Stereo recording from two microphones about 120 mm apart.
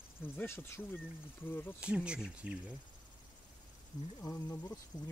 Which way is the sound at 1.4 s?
15° left (ahead or behind).